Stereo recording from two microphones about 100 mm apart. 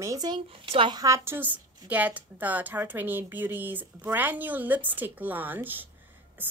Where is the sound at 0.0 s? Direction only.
35° right (ahead or behind).